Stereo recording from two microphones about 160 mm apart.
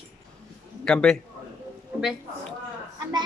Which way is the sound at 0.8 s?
5° left (ahead or behind).